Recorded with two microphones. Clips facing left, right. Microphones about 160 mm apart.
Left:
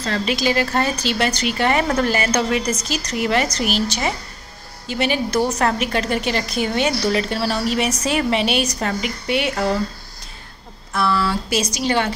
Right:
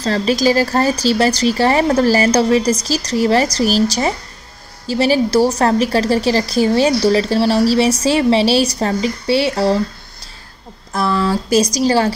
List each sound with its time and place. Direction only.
0.0 s a woman's voice: 35° right (ahead or behind)
10.9 s a woman's voice: 35° right (ahead or behind)